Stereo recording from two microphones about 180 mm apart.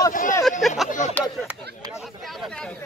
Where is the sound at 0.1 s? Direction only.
45° left (ahead or behind).